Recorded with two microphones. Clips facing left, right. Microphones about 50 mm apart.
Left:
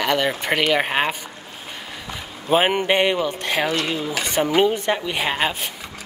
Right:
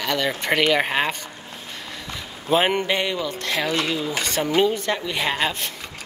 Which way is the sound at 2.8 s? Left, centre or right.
Left.